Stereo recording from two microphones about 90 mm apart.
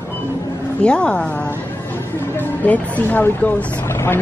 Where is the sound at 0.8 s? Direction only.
10° left (ahead or behind).